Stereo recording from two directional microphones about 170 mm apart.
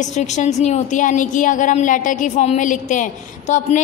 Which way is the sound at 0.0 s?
45° left (ahead or behind).